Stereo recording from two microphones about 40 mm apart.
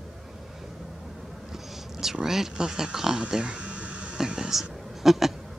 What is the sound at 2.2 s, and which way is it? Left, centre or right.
Speech, centre.